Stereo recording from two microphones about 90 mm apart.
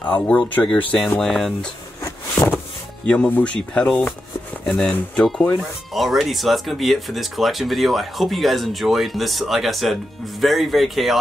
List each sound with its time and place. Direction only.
0.0 s speech: 15° left (ahead or behind)
1.2 s speech: 5° left (ahead or behind)
3.1 s speech: 15° left (ahead or behind)